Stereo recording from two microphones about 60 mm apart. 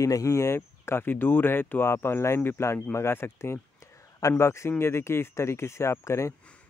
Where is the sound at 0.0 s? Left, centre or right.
Left.